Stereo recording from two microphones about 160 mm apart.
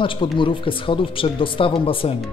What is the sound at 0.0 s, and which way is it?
Speech, 30° left (ahead or behind).